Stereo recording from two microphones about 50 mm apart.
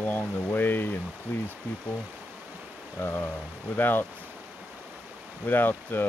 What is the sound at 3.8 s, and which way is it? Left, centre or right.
Speech, left.